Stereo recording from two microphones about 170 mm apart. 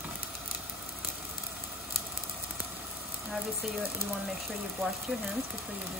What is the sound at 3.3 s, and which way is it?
Speech, centre (ahead or behind).